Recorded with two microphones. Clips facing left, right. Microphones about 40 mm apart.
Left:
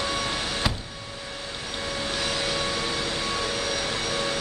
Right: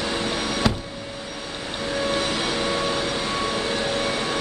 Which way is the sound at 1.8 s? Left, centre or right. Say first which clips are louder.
Right 6 dB; right.